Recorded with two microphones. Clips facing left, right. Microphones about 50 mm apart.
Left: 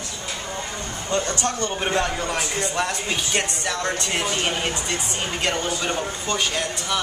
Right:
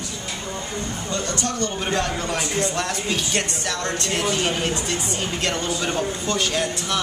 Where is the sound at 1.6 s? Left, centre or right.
Left.